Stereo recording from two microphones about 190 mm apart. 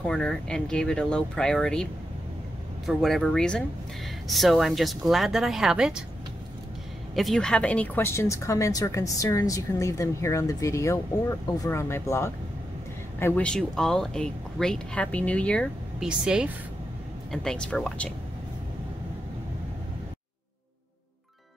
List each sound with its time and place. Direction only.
0.0 s speech: 5° left (ahead or behind)
2.9 s speech: centre (ahead or behind)
7.2 s speech: centre (ahead or behind)